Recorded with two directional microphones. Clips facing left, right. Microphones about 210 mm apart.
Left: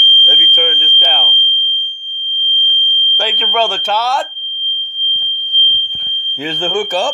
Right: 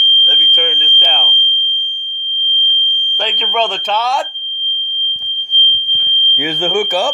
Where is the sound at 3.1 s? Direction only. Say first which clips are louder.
Left 1 dB; 10° left (ahead or behind).